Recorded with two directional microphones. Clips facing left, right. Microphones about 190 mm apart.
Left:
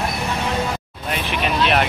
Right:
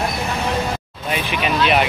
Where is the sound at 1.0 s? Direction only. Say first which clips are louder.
Right 1 dB; centre (ahead or behind).